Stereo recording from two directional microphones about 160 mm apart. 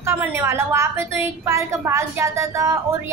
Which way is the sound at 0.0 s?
15° right (ahead or behind).